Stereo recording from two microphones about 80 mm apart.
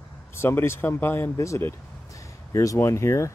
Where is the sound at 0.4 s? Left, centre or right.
Left.